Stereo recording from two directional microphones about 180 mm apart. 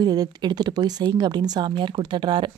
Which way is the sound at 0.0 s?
20° right (ahead or behind).